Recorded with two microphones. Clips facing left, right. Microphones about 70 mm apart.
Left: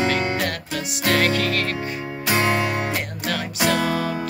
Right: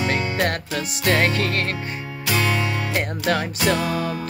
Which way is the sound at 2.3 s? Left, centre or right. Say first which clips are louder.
Left 2 dB; left.